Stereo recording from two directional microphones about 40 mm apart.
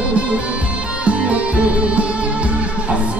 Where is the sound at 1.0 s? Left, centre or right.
Right.